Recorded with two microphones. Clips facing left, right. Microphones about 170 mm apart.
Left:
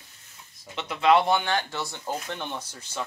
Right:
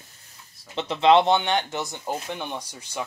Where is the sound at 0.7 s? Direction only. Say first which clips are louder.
Right 3 dB; 25° right (ahead or behind).